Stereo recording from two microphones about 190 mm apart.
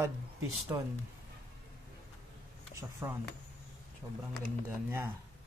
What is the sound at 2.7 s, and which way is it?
Speech, 15° right (ahead or behind).